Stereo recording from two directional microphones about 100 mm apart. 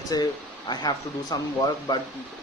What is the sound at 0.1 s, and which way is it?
Speech, 40° left (ahead or behind).